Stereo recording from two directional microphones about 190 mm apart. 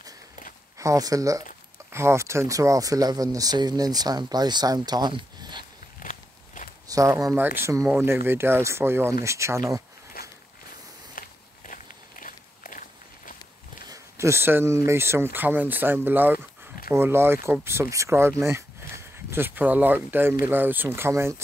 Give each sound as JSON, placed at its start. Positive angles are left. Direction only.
{"t": 0.7, "sound": "speech", "side_deg": -15}
{"t": 6.0, "sound": "walk", "side_deg": 40}
{"t": 6.9, "sound": "speech", "side_deg": -20}
{"t": 10.2, "sound": "a sound", "side_deg": 50}
{"t": 11.1, "sound": "walk", "side_deg": 45}
{"t": 13.8, "sound": "speech", "side_deg": -15}